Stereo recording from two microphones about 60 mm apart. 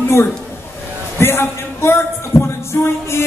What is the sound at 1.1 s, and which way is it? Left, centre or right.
A man's voice, left.